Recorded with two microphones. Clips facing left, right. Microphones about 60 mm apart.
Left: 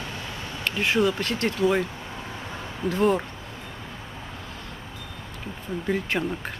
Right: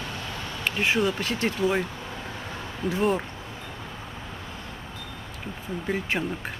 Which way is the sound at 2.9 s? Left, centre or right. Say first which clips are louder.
Left 3 dB; centre.